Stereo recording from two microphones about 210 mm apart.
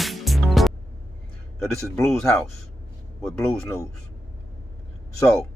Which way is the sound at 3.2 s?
Centre (ahead or behind).